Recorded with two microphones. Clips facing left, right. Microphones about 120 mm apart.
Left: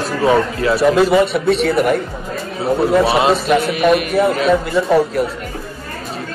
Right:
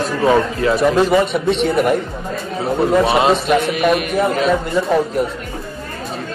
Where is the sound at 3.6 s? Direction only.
40° left (ahead or behind).